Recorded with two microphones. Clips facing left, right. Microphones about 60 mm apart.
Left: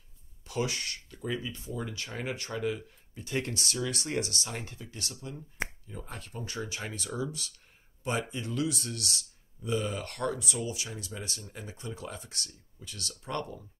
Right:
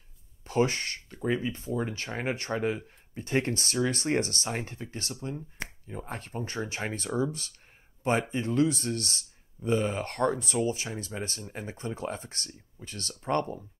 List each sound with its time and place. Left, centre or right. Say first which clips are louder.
0.4 s speech: right 6 dB; right